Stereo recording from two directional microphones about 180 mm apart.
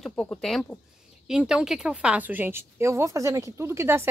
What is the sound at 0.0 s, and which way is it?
A woman's voice, 10° left (ahead or behind).